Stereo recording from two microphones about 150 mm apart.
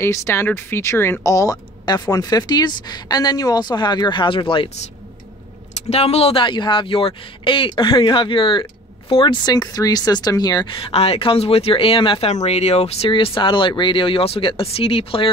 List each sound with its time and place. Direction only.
0.0 s speech: 15° left (ahead or behind); by 4.8 s 35° left (ahead or behind)
5.9 s speech: 40° left (ahead or behind); by 10.8 s 25° left (ahead or behind)
10.8 s speech: 40° left (ahead or behind)